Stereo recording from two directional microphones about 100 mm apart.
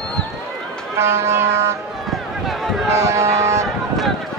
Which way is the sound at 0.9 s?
25° right (ahead or behind).